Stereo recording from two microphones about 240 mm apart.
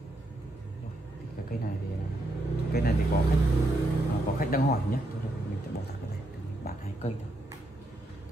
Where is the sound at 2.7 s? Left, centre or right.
Left.